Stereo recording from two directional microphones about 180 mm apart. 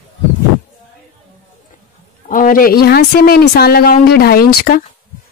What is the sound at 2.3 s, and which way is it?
Speech, 50° left (ahead or behind).